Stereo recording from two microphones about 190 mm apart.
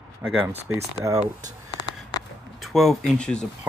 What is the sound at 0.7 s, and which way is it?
Speech, 90° right.